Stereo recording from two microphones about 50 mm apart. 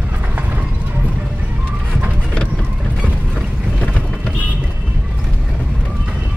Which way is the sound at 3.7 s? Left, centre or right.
Centre.